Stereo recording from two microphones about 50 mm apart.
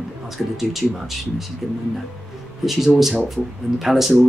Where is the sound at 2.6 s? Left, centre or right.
Centre.